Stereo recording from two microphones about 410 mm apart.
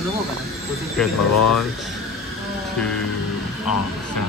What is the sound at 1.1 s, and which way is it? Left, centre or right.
Speech, left.